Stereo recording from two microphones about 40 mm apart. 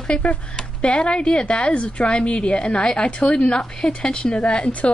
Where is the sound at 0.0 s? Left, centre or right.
Left.